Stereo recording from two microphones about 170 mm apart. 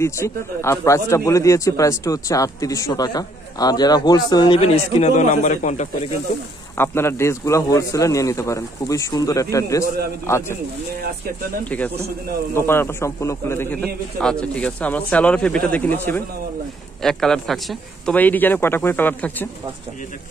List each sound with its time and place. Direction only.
0.0 s a man's voice: 15° left (ahead or behind)
4.6 s a man's voice: 35° left (ahead or behind)
6.8 s a man's voice: 15° left (ahead or behind)
12.5 s speech: 15° left (ahead or behind)